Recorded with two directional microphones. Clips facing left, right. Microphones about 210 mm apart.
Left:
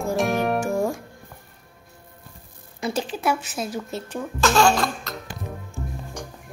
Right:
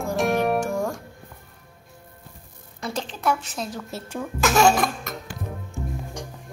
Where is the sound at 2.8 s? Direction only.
5° left (ahead or behind).